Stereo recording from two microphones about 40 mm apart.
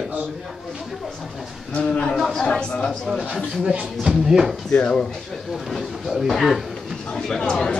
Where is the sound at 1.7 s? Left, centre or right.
Left.